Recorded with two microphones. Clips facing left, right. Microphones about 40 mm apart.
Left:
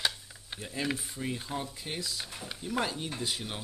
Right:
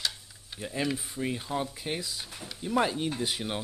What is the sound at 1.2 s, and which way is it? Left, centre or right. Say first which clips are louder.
Speech: right 4 dB; centre.